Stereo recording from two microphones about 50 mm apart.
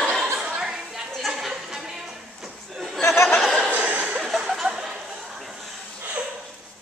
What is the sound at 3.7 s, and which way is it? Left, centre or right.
Chuckle, right.